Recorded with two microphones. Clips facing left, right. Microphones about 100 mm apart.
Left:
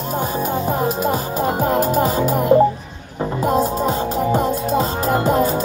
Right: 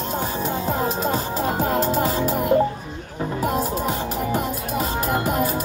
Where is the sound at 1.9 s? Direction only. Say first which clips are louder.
Left 4 dB; 20° left (ahead or behind).